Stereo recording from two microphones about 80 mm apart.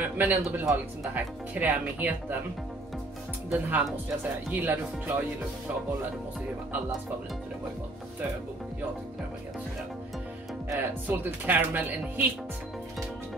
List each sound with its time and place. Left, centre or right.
0.0 s speech: right
3.5 s speech: right
11.1 s speech: right